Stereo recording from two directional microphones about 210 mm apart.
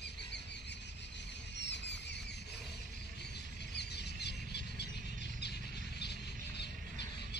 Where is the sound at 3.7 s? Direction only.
55° left (ahead or behind).